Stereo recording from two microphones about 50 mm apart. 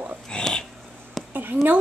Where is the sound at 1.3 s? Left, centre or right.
Right.